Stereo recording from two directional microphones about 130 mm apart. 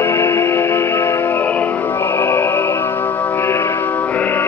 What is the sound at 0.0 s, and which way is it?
Music, 20° left (ahead or behind).